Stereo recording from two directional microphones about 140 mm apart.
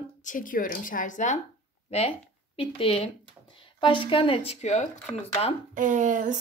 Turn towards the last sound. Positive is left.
turn(degrees=-65)  # may be behind; listen again after turning